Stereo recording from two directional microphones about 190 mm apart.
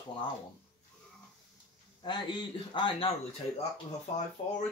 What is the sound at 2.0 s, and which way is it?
Speech, 25° left (ahead or behind).